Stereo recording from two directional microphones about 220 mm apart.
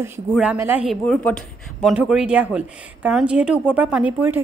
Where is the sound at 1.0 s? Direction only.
5° left (ahead or behind).